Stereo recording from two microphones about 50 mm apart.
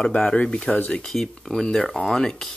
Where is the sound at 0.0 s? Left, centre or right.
Centre.